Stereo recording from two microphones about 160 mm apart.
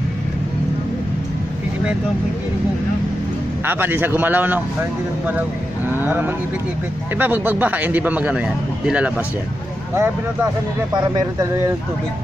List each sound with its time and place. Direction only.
3.6 s speech: 15° right (ahead or behind)
5.9 s speech: 10° right (ahead or behind)
9.9 s speech: 20° right (ahead or behind)